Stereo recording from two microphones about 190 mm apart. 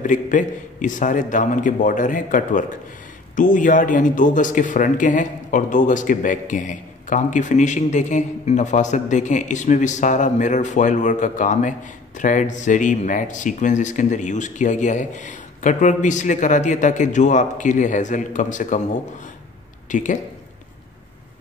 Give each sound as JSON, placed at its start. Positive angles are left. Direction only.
{"t": 0.0, "sound": "a man's voice", "side_deg": 40}
{"t": 19.9, "sound": "speech", "side_deg": 40}